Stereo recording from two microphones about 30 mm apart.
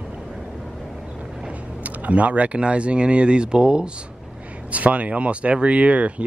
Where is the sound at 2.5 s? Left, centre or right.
Right.